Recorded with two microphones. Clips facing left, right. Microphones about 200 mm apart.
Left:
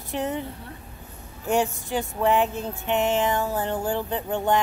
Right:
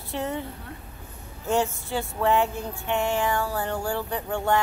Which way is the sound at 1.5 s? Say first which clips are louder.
Left 1 dB; 15° left (ahead or behind).